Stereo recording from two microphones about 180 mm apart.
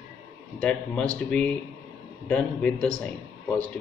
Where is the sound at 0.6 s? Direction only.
5° left (ahead or behind).